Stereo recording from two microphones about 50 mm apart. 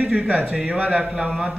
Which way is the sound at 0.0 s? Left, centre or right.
Right.